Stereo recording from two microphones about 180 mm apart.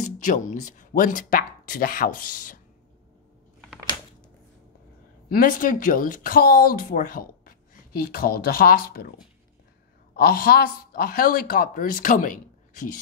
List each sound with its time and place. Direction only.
0.0 s speech: 40° left (ahead or behind)
5.3 s speech: 50° left (ahead or behind)
10.1 s speech: 55° left (ahead or behind)